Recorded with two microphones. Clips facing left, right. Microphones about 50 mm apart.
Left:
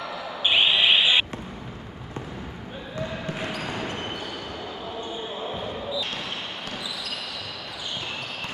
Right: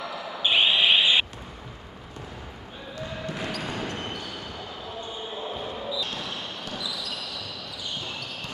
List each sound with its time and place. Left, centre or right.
0.0 s a sound: centre
3.3 s basketball bounce: centre
6.1 s basketball bounce: left